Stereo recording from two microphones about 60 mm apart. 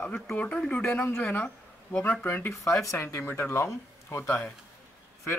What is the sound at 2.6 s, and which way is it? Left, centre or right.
Speech, left.